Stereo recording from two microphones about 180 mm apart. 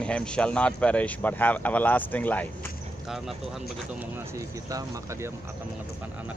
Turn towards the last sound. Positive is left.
turn(degrees=-20)  # may be behind; listen again after turning